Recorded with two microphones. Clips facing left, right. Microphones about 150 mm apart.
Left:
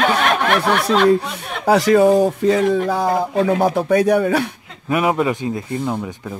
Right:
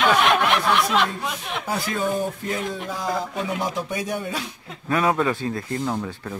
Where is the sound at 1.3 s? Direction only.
80° left.